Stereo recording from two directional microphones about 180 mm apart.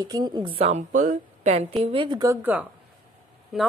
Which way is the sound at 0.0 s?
20° right (ahead or behind).